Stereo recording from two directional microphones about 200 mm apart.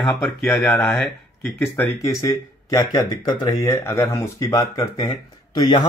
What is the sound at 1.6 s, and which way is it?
Speech, 15° left (ahead or behind).